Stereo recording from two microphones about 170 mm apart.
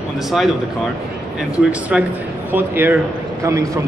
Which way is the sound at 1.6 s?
5° right (ahead or behind).